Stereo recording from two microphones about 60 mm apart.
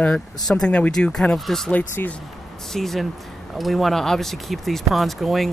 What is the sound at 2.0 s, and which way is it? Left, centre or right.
Speech, left.